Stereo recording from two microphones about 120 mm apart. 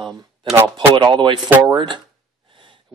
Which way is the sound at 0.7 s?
40° right (ahead or behind).